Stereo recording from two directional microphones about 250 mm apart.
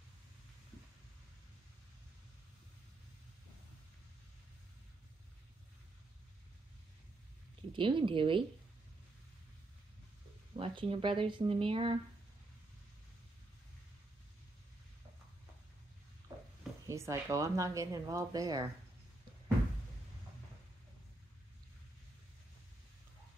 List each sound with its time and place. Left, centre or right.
7.7 s speech: centre
10.5 s speech: centre
16.8 s speech: centre